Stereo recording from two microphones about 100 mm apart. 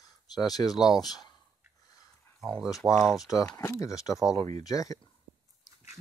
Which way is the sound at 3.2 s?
35° left (ahead or behind).